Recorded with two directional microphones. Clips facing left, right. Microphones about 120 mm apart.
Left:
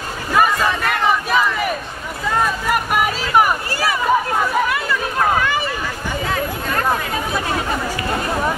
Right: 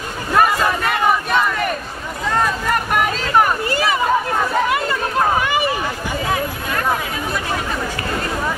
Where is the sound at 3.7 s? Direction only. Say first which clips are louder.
Right 2 dB; 20° right (ahead or behind).